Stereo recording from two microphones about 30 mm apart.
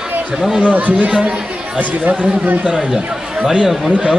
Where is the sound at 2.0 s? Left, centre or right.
Right.